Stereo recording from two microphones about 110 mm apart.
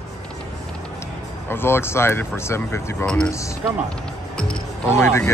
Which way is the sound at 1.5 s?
20° left (ahead or behind).